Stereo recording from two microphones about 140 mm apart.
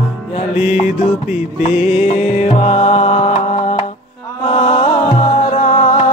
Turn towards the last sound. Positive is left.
turn(degrees=65)  # may be behind; listen again after turning